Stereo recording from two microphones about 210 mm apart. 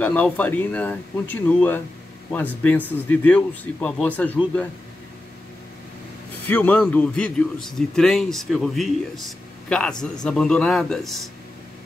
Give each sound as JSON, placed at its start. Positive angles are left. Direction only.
{"t": 0.0, "sound": "speech", "side_deg": 5}
{"t": 6.4, "sound": "a man's voice", "side_deg": 5}